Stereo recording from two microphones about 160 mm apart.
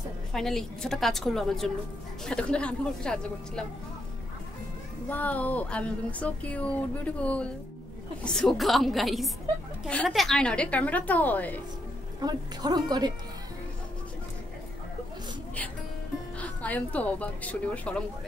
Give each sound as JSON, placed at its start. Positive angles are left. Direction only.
{"t": 0.3, "sound": "a woman's voice", "side_deg": 5}
{"t": 5.1, "sound": "a woman's voice", "side_deg": 10}
{"t": 12.2, "sound": "a woman's voice", "side_deg": -25}
{"t": 16.3, "sound": "speech", "side_deg": 10}